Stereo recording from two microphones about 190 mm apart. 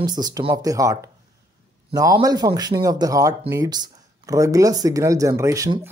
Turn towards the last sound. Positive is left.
turn(degrees=-15)  # may be behind; listen again after turning